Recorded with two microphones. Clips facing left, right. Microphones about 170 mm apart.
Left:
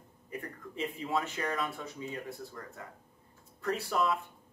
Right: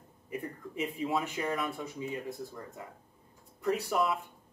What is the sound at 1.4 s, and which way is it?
Speech, 10° right (ahead or behind).